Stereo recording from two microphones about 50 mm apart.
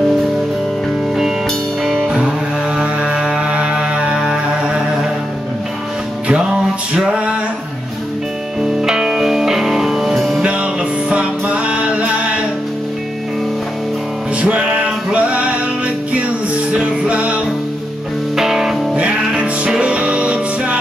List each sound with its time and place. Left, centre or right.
2.0 s music: centre
2.8 s a sound: centre
3.4 s music: right
6.2 s music: right
7.1 s a sound: right
8.6 s music: centre
10.1 s music: centre
10.4 s music: right
14.4 s music: right
16.7 s music: right
18.3 s music: centre
18.9 s music: right